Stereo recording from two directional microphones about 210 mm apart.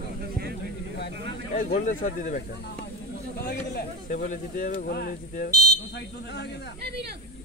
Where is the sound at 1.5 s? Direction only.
40° left (ahead or behind).